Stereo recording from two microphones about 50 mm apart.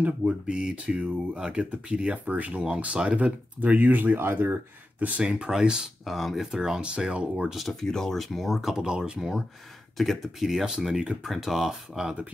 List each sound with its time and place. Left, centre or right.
0.2 s speech: right
5.2 s speech: centre
6.0 s speech: centre
6.5 s speech: centre
7.4 s speech: centre
7.8 s speech: centre
8.7 s speech: centre
9.9 s speech: centre